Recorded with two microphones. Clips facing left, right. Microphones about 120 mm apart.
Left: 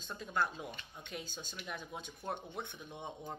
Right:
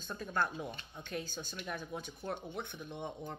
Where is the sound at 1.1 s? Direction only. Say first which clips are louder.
Right 5 dB; 20° left (ahead or behind).